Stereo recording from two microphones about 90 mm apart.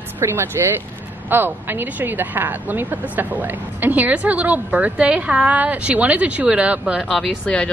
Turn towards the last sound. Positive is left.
turn(degrees=10)  # may be behind; listen again after turning